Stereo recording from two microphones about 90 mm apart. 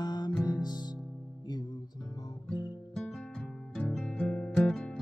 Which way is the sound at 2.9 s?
5° left (ahead or behind).